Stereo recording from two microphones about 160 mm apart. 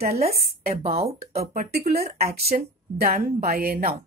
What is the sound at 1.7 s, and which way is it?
Speech, 85° right.